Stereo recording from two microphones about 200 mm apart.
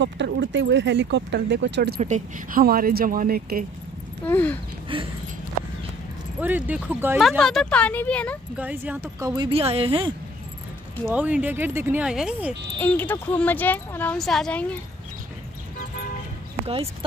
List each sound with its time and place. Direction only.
0.0 s speech: 65° right (ahead or behind)
2.0 s speech: 35° right (ahead or behind)
4.3 s speech: 10° left (ahead or behind)
4.9 s speech: 25° right (ahead or behind)
6.4 s speech: 10° right (ahead or behind)
7.2 s speech: centre (ahead or behind)
8.5 s speech: 5° right (ahead or behind); by 10.1 s 25° right (ahead or behind)
11.1 s speech: 5° right (ahead or behind)
12.7 s speech: 10° left (ahead or behind)